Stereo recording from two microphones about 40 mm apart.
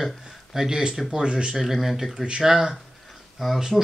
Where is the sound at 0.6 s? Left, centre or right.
Centre.